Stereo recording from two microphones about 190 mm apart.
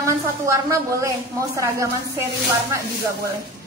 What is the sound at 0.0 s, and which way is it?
A woman's voice, 15° right (ahead or behind).